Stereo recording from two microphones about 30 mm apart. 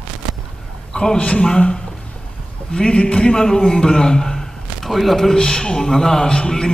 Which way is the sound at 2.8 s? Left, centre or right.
Left.